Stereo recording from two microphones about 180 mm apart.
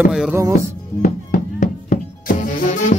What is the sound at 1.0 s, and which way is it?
Music, 45° left (ahead or behind).